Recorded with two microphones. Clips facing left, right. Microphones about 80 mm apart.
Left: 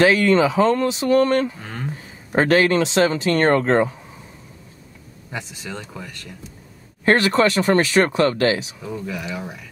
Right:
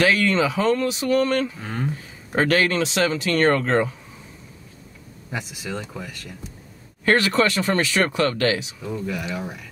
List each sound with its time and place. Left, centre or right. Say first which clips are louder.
0.0 s speech: left 4 dB; left
1.6 s speech: right 3 dB; centre
2.3 s speech: left 4 dB; left
5.3 s speech: right 1 dB; centre
7.1 s speech: left 3 dB; left
9.0 s speech: right 1 dB; centre